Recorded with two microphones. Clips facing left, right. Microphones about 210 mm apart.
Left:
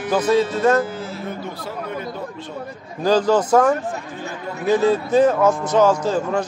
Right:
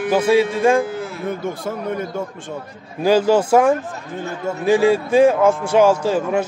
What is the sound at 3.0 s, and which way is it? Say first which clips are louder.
Speech: right 2 dB; 10° right (ahead or behind).